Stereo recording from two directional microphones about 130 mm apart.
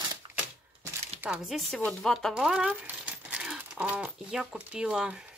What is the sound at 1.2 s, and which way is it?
Speech, 5° right (ahead or behind).